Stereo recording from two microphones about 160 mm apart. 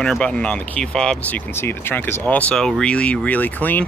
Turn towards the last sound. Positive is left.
turn(degrees=10)  # may be behind; listen again after turning